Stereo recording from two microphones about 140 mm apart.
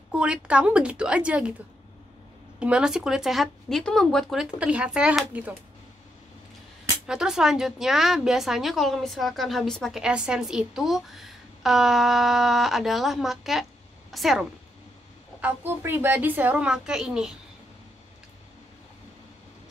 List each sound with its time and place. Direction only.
0.1 s a woman's voice: 10° right (ahead or behind)
2.6 s a woman's voice: 5° right (ahead or behind)
7.1 s a woman's voice: 5° right (ahead or behind)
15.4 s a woman's voice: 15° right (ahead or behind)